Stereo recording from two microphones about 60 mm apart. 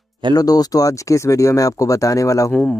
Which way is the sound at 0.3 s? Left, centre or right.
Left.